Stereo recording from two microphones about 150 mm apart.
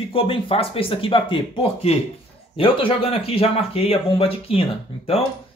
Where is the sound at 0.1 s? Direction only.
40° left (ahead or behind).